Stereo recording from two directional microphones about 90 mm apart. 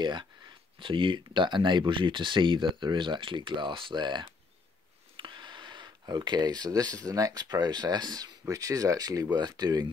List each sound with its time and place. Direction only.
0.0 s speech: 55° right (ahead or behind)
0.7 s speech: 70° right (ahead or behind); by 9.8 s 45° right (ahead or behind)